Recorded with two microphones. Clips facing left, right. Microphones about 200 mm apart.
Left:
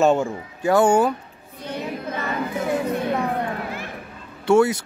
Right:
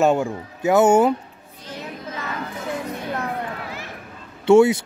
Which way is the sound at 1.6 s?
60° left (ahead or behind).